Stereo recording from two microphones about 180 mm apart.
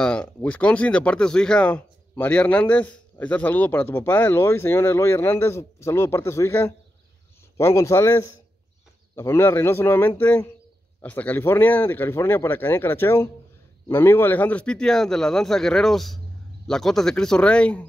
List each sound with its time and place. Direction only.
0.0 s a man's voice: 5° left (ahead or behind)